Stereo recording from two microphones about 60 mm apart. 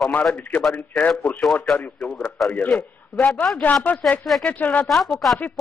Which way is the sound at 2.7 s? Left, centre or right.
Centre.